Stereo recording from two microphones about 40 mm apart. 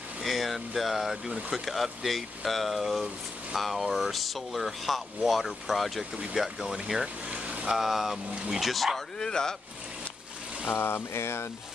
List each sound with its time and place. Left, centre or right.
0.2 s speech: centre
1.7 s speech: centre
7.2 s a sound: right
7.7 s speech: centre
9.2 s speech: centre
10.6 s speech: left